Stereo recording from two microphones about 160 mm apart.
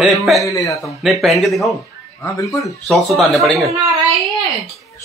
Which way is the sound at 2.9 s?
Centre (ahead or behind).